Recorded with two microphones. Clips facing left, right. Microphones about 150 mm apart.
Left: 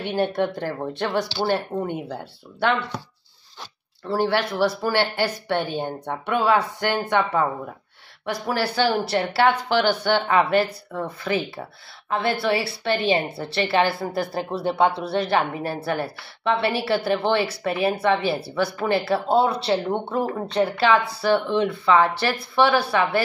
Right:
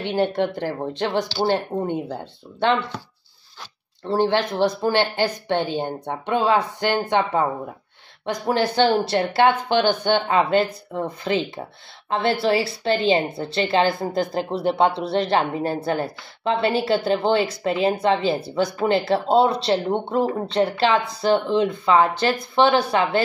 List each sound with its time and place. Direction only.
0.0 s speech: 20° right (ahead or behind)
4.0 s speech: 25° right (ahead or behind)